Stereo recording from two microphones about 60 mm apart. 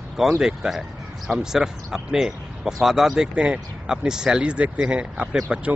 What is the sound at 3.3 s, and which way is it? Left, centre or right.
Speech, centre.